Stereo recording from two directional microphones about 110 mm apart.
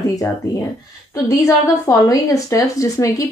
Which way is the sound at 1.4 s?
30° left (ahead or behind).